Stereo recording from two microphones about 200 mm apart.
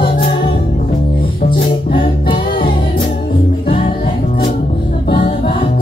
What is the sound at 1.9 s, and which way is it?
Music, 25° left (ahead or behind).